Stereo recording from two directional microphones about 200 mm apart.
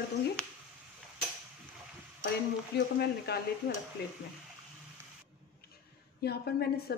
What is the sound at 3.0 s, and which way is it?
Speech, 55° left (ahead or behind).